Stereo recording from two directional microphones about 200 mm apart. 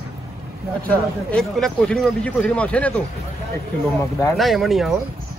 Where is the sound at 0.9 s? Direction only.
5° left (ahead or behind).